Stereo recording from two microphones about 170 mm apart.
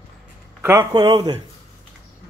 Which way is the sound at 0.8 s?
25° right (ahead or behind).